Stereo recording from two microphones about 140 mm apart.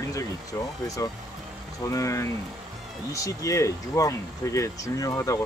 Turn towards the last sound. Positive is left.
turn(degrees=25)  # may be behind; listen again after turning